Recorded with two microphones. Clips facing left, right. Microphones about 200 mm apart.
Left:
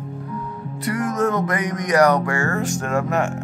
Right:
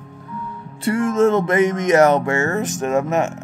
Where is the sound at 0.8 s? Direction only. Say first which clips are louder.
Right 5 dB; 25° right (ahead or behind).